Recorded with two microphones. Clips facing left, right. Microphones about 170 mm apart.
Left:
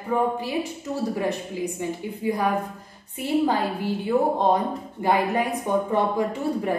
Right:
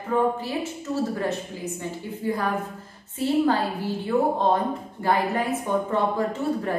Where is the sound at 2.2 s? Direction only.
15° left (ahead or behind).